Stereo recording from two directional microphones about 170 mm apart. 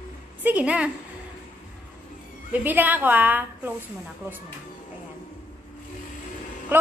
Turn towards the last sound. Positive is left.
turn(degrees=-10)  # may be behind; listen again after turning